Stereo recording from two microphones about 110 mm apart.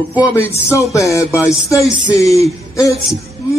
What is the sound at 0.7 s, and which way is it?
A man's voice, 30° left (ahead or behind).